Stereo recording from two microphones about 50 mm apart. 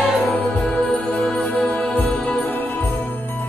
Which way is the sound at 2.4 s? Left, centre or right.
Left.